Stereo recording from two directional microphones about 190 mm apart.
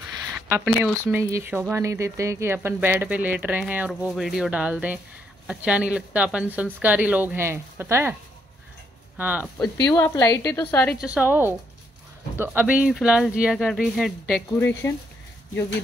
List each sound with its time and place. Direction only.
0.7 s speech: 5° right (ahead or behind)
9.6 s a woman's voice: 20° left (ahead or behind)
11.0 s speech: 5° right (ahead or behind)
14.6 s a woman's voice: 10° left (ahead or behind)